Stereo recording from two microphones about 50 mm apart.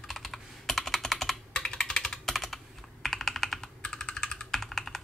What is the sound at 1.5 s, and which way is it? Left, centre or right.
Computer keyboard, centre.